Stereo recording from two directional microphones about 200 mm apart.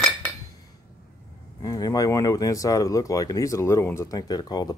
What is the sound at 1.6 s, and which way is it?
Speech, 20° left (ahead or behind).